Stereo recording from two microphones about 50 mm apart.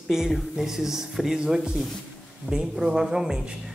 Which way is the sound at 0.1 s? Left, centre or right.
Centre.